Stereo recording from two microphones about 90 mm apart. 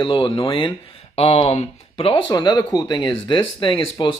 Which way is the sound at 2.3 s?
50° left (ahead or behind).